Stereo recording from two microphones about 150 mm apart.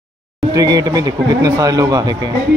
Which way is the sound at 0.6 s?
25° right (ahead or behind).